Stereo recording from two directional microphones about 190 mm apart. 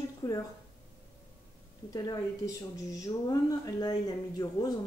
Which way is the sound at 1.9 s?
20° left (ahead or behind).